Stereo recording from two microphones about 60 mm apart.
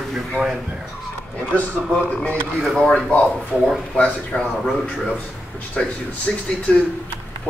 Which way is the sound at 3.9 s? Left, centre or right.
Centre.